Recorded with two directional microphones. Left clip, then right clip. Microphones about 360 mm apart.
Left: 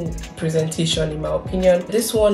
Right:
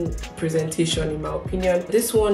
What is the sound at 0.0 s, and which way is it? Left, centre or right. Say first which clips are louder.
A woman's voice: even; centre.